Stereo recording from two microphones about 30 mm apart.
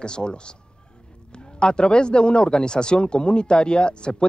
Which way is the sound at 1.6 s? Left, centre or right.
Left.